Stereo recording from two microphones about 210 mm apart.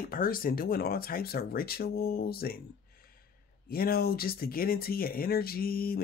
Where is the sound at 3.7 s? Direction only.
45° left (ahead or behind).